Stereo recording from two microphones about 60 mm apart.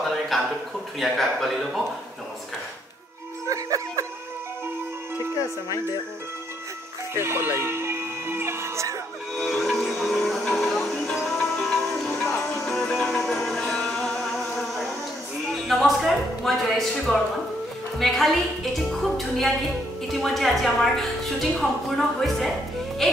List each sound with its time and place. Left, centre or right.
0.0 s a sound: centre
0.9 s a woman's voice: centre
3.4 s music: right
7.2 s speech: right
9.4 s music: centre
12.2 s music: left
12.6 s music: centre
15.5 s a sound: centre
16.1 s a woman's voice: centre